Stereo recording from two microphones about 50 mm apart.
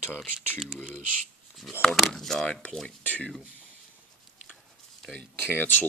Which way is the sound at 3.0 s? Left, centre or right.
Left.